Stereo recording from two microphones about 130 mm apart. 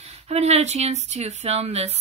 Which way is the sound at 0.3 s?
55° right (ahead or behind).